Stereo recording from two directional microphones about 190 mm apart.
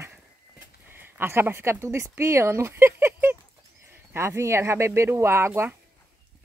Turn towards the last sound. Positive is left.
turn(degrees=-15)  # may be behind; listen again after turning